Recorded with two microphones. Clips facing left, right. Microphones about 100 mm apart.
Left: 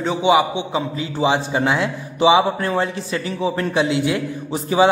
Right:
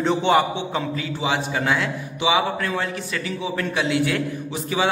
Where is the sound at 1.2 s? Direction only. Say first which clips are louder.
Left 6 dB; 25° left (ahead or behind).